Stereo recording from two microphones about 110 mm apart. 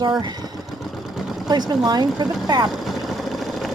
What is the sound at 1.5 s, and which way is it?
Speech, 40° right (ahead or behind).